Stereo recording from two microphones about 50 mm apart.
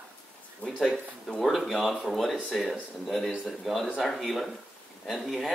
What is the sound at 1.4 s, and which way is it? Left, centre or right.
Speech, centre.